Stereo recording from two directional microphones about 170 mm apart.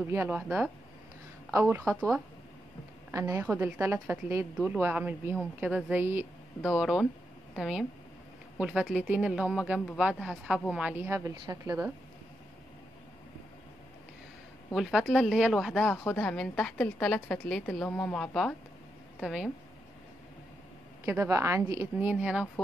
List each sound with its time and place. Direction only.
0.0 s a woman's voice: 15° right (ahead or behind)
3.1 s a woman's voice: 20° right (ahead or behind)
14.7 s a woman's voice: centre (ahead or behind)
21.0 s a woman's voice: 15° right (ahead or behind)
22.1 s a woman's voice: 5° right (ahead or behind)